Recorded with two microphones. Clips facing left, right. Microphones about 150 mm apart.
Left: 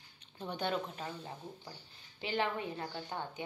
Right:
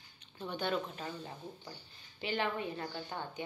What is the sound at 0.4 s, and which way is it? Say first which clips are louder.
Speech: right 1 dB; 25° left (ahead or behind).